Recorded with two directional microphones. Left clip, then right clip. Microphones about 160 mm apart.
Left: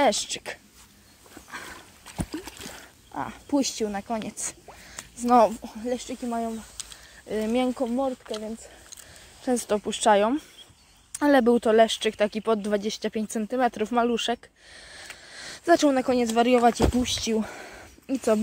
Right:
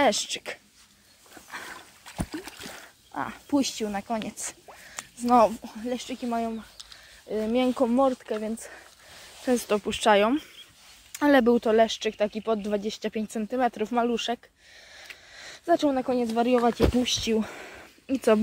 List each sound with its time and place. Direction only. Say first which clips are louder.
0.0 s speech: left 1 dB; 5° left (ahead or behind)
1.5 s dog: even; 10° left (ahead or behind)
2.0 s a sound: left 1 dB; centre (ahead or behind)
5.3 s speech: left 1 dB; 10° left (ahead or behind)
7.2 s speech: even; 15° left (ahead or behind)
7.7 s speech: right 4 dB; 20° right (ahead or behind)
9.4 s speech: even; centre (ahead or behind); by 16.8 s 25° left (ahead or behind)
16.8 s speech: right 1 dB; 10° left (ahead or behind)